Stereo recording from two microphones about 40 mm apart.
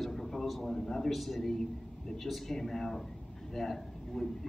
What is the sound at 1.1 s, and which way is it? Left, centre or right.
Speech, centre.